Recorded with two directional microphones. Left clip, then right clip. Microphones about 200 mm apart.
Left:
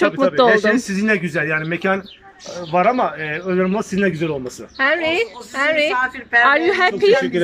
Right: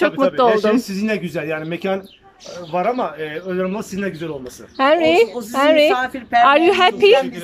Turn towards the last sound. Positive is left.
turn(degrees=-10)  # may be behind; listen again after turning